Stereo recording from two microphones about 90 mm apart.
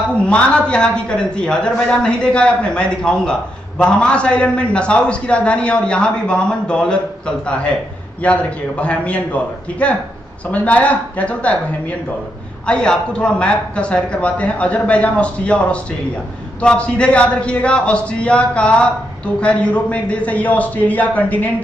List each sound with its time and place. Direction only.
0.2 s a man's voice: 10° left (ahead or behind)
12.6 s a man's voice: 10° left (ahead or behind)